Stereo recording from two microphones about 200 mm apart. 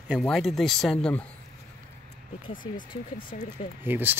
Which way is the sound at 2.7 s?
25° left (ahead or behind).